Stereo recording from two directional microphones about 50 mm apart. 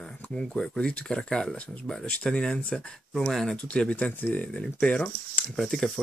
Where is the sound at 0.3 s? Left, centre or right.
Centre.